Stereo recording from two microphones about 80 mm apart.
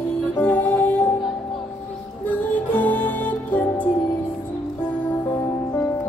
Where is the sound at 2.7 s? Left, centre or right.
Left.